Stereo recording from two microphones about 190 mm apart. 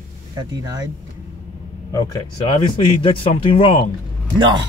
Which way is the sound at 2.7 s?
25° left (ahead or behind).